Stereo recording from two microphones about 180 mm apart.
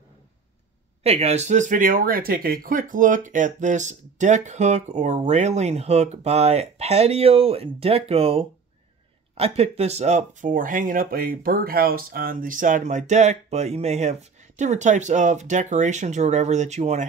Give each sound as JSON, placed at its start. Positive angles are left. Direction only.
{"t": 1.0, "sound": "speech", "side_deg": -35}